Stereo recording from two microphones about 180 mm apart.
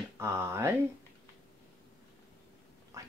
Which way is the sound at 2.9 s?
15° right (ahead or behind).